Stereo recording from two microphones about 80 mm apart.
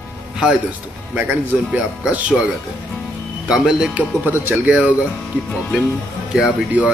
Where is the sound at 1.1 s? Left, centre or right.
Centre.